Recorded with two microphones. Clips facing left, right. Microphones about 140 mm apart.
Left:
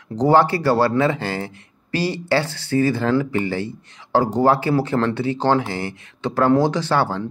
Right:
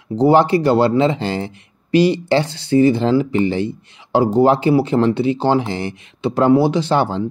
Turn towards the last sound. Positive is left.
turn(degrees=-20)  # may be behind; listen again after turning